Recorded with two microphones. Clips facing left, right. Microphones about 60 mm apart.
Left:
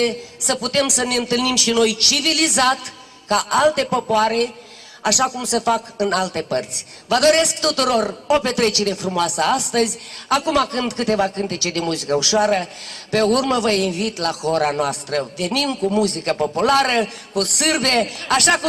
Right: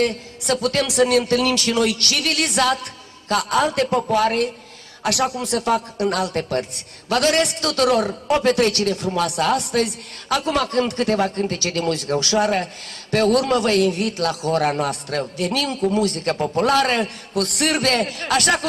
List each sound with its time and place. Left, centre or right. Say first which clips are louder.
0.0 s speech: left 1 dB; left
5.0 s speech: left 2 dB; left
8.9 s speech: left 1 dB; left